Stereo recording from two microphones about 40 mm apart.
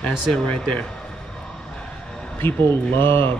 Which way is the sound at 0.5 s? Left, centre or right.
Left.